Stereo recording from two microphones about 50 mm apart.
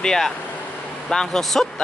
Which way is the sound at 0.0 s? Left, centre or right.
Centre.